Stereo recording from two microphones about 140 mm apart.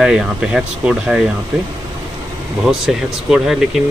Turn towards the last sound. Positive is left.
turn(degrees=-5)  # may be behind; listen again after turning